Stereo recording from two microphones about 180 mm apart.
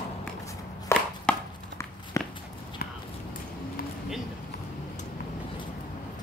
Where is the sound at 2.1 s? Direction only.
20° left (ahead or behind).